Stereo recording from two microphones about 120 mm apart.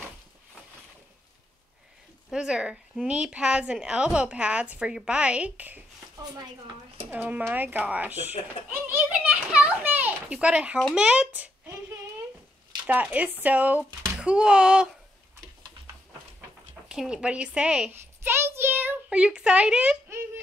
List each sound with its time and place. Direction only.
2.3 s a woman's voice: 5° right (ahead or behind)
7.1 s a woman's voice: 15° right (ahead or behind)
12.8 s a woman's voice: 10° right (ahead or behind)
16.9 s a woman's voice: 5° right (ahead or behind)
18.2 s a child's voice: 20° right (ahead or behind)
20.1 s a sound: 20° right (ahead or behind)